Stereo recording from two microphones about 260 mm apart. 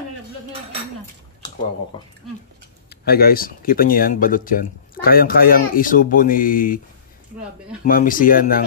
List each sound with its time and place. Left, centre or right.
1.9 s speech: centre
2.9 s speech: left
7.8 s speech: left